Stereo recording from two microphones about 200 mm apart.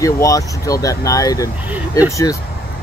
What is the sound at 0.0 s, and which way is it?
Speech, 15° left (ahead or behind).